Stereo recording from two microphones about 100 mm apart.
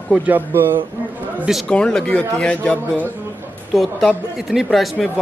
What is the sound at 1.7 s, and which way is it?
Speech, 10° left (ahead or behind).